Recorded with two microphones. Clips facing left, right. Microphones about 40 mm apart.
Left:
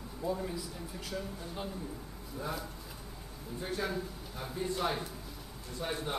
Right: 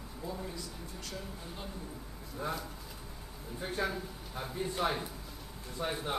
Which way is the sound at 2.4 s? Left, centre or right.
Centre.